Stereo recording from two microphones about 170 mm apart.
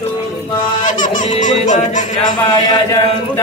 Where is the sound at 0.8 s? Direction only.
50° left (ahead or behind).